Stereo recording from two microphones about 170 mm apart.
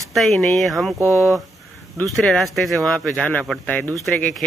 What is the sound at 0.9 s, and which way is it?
Speech, 15° right (ahead or behind).